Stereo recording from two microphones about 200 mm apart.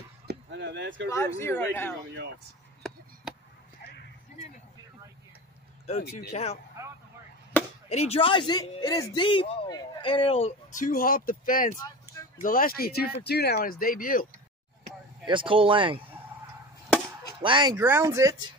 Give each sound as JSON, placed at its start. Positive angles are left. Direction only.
{"t": 0.3, "sound": "a sound", "side_deg": -60}
{"t": 1.1, "sound": "speech", "side_deg": 15}
{"t": 6.3, "sound": "speech", "side_deg": 30}
{"t": 7.9, "sound": "speech", "side_deg": 30}
{"t": 15.2, "sound": "speech", "side_deg": -25}
{"t": 17.4, "sound": "speech", "side_deg": -25}
{"t": 17.7, "sound": "speech", "side_deg": -10}